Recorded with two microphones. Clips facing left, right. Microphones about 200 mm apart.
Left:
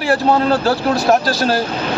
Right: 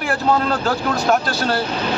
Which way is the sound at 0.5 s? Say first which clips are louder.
Left 5 dB; 35° left (ahead or behind).